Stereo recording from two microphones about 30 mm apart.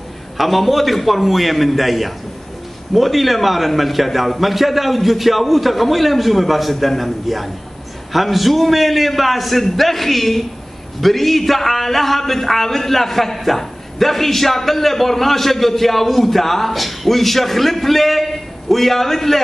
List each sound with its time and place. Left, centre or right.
0.4 s a man's voice: centre